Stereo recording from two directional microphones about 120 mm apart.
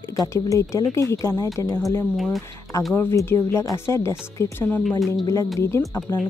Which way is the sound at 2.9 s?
20° left (ahead or behind).